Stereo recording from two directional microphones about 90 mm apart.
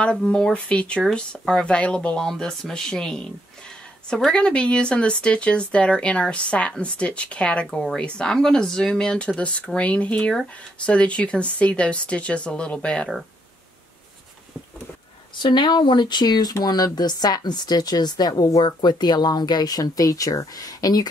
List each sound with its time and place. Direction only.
0.0 s speech: 10° left (ahead or behind)
15.3 s speech: 60° left (ahead or behind)